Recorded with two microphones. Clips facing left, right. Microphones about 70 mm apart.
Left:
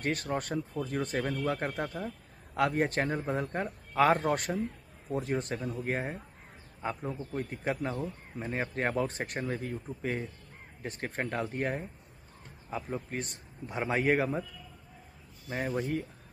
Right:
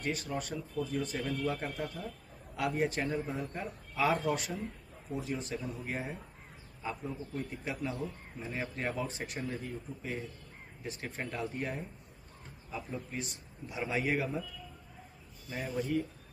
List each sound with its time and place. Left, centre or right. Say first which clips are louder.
0.0 s a man's voice: left 4 dB; left
15.4 s a man's voice: left 3 dB; left